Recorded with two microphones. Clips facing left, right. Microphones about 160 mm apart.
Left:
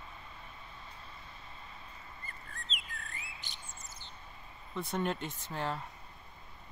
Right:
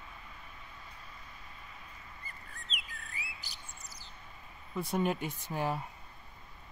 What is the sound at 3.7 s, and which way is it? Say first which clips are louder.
Bird: left 1 dB; 20° left (ahead or behind).